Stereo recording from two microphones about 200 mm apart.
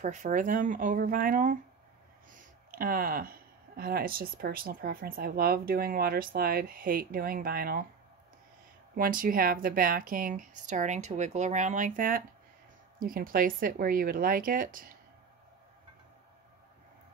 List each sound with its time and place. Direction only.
0.0 s speech: 40° right (ahead or behind)
8.9 s speech: 45° right (ahead or behind)